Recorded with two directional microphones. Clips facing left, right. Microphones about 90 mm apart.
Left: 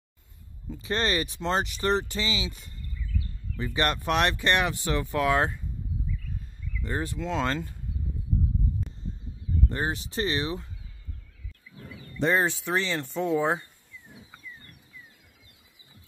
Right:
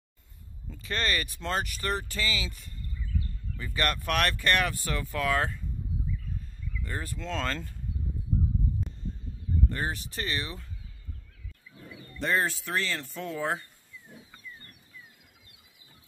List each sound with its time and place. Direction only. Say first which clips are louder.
0.7 s speech: left 4 dB; 25° left (ahead or behind)
6.8 s speech: left 6 dB; 25° left (ahead or behind)
7.2 s speech: left 3 dB; 10° left (ahead or behind)
9.7 s speech: left 3 dB; 25° left (ahead or behind)
12.2 s speech: left 4 dB; 25° left (ahead or behind)